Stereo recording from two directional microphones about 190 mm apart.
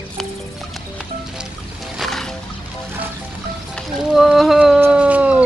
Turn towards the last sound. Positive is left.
turn(degrees=-10)  # may be behind; listen again after turning